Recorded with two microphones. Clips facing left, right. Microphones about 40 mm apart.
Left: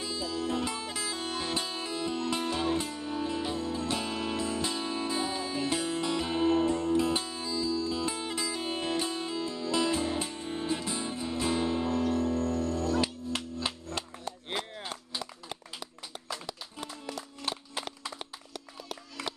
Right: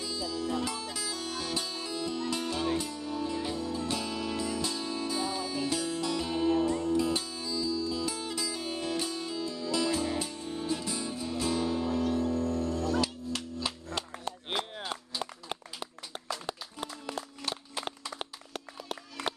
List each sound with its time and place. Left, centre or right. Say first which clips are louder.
0.0 s music: left 1 dB; left
12.0 s music: even; left
13.0 s music: left 1 dB; left
14.2 s a sound: right 2 dB; right
16.4 s a sound: right 2 dB; right
18.2 s music: right 3 dB; right